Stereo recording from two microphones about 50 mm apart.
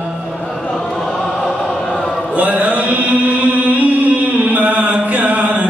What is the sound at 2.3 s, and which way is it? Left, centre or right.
Chant, right.